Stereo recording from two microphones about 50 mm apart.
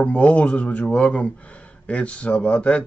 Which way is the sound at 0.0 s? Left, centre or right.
Left.